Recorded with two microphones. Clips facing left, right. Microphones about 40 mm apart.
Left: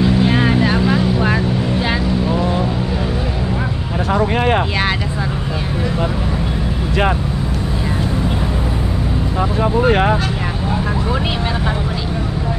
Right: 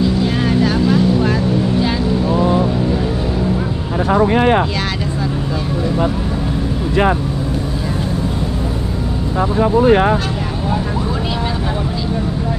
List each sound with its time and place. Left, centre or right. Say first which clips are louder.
0.0 s vehicle: left 2 dB; left